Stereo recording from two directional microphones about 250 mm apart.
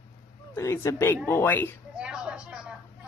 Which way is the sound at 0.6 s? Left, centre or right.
Centre.